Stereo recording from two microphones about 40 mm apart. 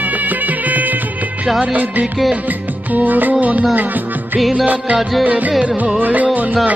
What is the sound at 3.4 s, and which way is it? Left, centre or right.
Music, right.